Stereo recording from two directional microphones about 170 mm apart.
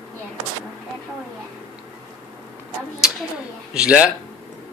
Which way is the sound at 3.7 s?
5° right (ahead or behind).